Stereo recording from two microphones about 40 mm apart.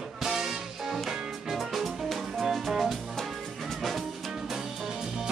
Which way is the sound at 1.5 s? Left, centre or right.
Centre.